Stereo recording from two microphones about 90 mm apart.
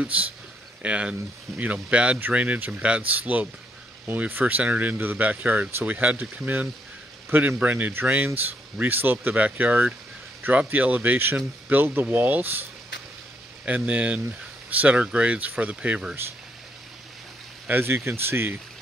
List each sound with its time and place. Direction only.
0.0 s a man's voice: 15° right (ahead or behind)
13.7 s speech: 15° right (ahead or behind)
17.6 s speech: 25° right (ahead or behind)